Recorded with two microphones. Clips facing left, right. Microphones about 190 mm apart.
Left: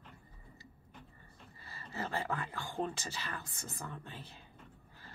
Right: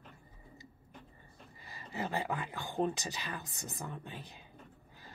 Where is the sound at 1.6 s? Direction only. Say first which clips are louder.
Right 2 dB; 15° right (ahead or behind).